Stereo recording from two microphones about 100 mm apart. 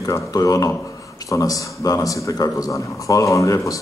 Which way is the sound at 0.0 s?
35° left (ahead or behind).